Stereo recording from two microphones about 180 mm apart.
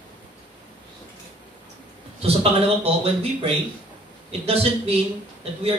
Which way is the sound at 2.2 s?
35° right (ahead or behind).